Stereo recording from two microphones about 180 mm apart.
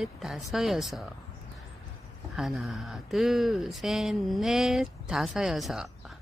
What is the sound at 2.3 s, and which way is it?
Speech, centre (ahead or behind).